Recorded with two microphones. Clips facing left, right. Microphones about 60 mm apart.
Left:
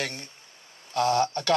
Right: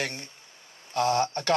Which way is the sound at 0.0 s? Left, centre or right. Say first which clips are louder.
Even; right.